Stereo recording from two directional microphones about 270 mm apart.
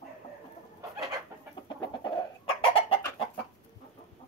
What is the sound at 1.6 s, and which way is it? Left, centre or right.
Chicken, centre.